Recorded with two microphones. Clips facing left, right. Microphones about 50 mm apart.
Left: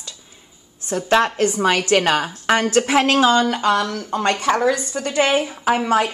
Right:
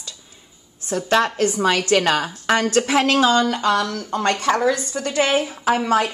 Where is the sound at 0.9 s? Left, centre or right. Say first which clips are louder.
Left 1 dB; centre.